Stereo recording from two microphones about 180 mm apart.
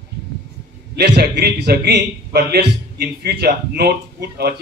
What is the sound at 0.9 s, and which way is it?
A man's voice, 65° right (ahead or behind).